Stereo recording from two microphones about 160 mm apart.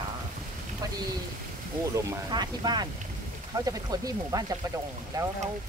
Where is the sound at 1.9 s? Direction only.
25° right (ahead or behind).